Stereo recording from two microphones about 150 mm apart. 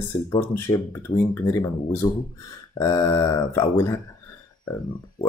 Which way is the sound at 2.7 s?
25° left (ahead or behind).